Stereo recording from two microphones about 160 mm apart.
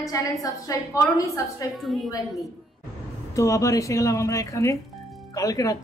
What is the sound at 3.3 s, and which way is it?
A woman's voice, 20° left (ahead or behind).